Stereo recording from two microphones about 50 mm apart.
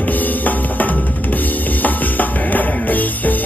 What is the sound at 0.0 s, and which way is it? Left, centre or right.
Drum, left.